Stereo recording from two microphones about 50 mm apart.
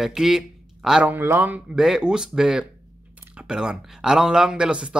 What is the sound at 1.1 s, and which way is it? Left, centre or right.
Speech, right.